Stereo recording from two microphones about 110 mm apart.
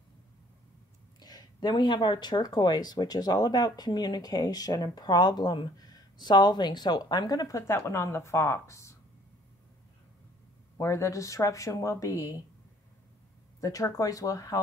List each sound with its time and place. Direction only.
1.2 s speech: 35° left (ahead or behind)
10.8 s a woman's voice: 30° left (ahead or behind)
13.6 s speech: 30° left (ahead or behind)